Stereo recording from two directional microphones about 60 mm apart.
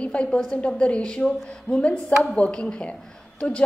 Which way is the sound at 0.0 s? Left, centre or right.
Centre.